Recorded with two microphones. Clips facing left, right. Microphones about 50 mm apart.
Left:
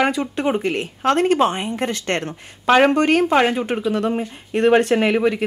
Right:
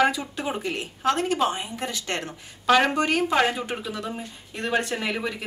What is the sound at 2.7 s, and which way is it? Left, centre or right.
Speech, left.